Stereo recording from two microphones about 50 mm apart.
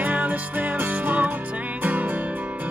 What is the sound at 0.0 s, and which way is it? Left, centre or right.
Music, right.